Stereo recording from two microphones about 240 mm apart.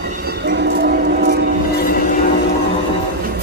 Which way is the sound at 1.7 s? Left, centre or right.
Left.